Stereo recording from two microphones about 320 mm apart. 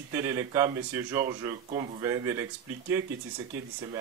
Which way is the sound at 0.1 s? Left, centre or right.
Centre.